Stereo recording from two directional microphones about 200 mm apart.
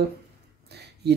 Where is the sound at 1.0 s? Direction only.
55° right (ahead or behind).